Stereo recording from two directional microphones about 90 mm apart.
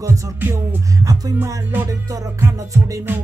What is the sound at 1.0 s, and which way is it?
Music, 40° right (ahead or behind).